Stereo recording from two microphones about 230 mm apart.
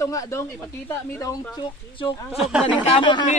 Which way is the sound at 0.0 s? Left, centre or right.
Centre.